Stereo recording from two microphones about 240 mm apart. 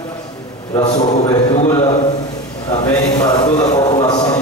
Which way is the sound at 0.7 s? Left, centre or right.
Left.